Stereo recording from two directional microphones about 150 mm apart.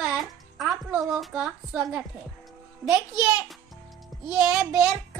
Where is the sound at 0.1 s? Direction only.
Centre (ahead or behind).